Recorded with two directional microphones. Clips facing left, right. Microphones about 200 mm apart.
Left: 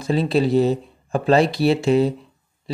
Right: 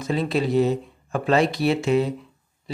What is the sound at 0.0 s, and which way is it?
Speech, 30° left (ahead or behind).